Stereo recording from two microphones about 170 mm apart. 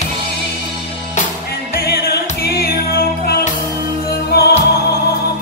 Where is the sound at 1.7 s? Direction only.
65° left (ahead or behind).